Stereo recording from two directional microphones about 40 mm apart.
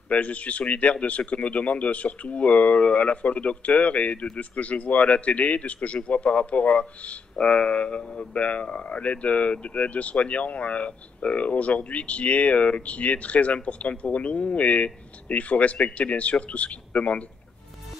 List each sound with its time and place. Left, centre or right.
0.1 s speech: left